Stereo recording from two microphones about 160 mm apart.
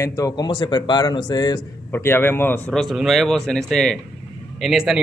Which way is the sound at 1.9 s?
15° left (ahead or behind).